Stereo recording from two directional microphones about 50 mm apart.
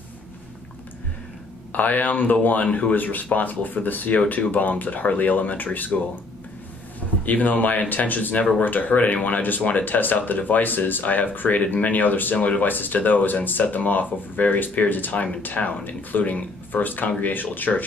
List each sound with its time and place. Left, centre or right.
1.7 s speech: left
7.2 s speech: left